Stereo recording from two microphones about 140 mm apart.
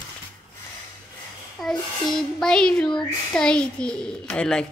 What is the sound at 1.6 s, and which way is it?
A child's voice, centre (ahead or behind).